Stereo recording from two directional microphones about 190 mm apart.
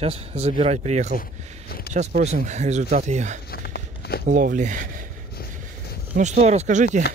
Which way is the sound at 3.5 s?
60° left (ahead or behind).